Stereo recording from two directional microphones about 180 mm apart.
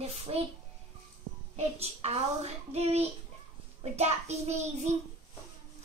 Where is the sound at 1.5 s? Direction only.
35° right (ahead or behind).